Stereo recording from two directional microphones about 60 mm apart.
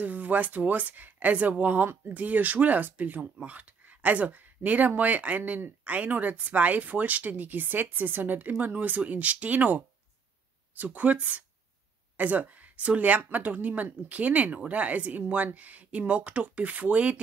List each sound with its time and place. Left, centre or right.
0.0 s speech: right